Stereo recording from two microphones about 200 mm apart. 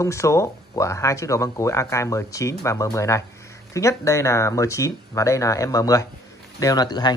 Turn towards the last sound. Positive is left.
turn(degrees=20)  # may be behind; listen again after turning